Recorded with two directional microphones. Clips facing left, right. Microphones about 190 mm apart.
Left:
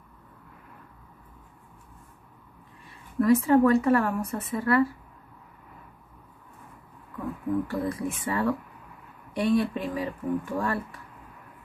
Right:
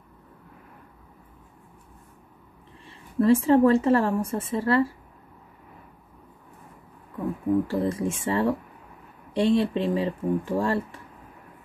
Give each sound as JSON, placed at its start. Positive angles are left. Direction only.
{"t": 2.9, "sound": "a woman's voice", "side_deg": -30}
{"t": 7.6, "sound": "a woman's voice", "side_deg": -25}